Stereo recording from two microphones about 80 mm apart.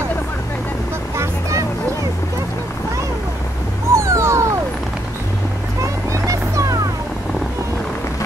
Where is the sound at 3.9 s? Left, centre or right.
Right.